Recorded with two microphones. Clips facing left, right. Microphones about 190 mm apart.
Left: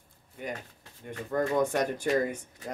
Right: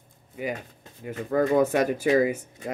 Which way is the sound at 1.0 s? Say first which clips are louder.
Right 6 dB; 80° right.